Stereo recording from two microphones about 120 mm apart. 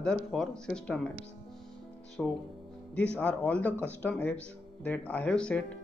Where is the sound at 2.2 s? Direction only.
10° left (ahead or behind).